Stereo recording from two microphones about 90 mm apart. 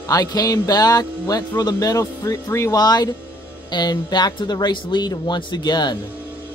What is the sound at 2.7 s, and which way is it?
Speech, 45° left (ahead or behind).